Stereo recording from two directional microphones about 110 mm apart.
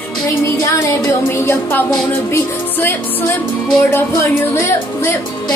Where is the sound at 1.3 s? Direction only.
15° left (ahead or behind).